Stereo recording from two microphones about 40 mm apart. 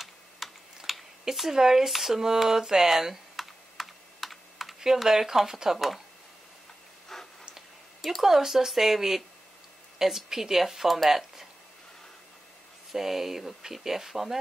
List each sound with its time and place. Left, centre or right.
0.4 s typing: centre
0.9 s a sound: centre
4.7 s speech: centre
8.2 s speech: centre
12.9 s speech: centre